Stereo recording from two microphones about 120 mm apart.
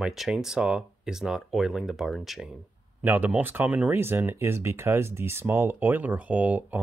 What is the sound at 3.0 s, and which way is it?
Speech, 15° right (ahead or behind).